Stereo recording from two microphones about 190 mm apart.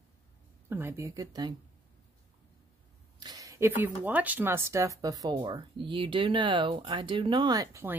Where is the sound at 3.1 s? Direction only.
20° right (ahead or behind).